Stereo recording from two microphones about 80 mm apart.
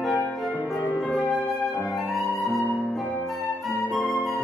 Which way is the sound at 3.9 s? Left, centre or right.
Centre.